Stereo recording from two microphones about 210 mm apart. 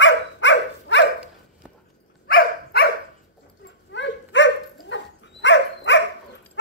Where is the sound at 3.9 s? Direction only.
60° left (ahead or behind).